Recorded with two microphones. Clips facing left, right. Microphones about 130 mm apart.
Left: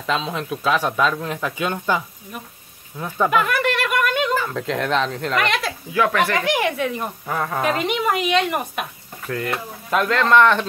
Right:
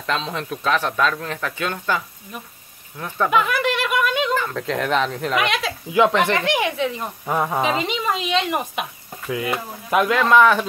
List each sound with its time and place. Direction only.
0.0 s speech: 5° left (ahead or behind)
3.3 s speech: centre (ahead or behind)
5.9 s speech: 20° right (ahead or behind)
6.3 s speech: 5° left (ahead or behind)
7.2 s speech: 15° right (ahead or behind)
7.7 s speech: 5° left (ahead or behind)